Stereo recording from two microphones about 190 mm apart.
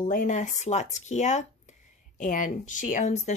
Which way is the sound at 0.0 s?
45° left (ahead or behind).